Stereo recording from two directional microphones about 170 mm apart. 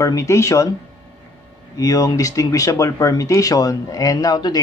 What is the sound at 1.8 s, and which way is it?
Speech, 20° left (ahead or behind).